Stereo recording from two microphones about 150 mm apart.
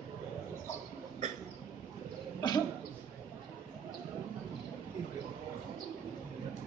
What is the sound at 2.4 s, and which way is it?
Cough, 30° left (ahead or behind).